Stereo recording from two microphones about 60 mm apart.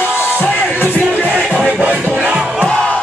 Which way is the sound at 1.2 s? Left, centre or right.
Right.